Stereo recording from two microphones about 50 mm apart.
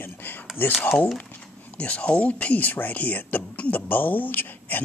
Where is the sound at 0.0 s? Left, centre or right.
Left.